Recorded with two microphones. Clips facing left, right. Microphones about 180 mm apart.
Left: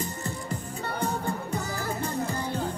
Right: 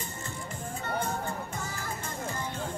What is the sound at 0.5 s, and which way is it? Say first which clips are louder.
Music: left 1 dB; 35° left (ahead or behind).